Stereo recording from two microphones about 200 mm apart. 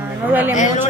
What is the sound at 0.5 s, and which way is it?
Speech, 35° left (ahead or behind).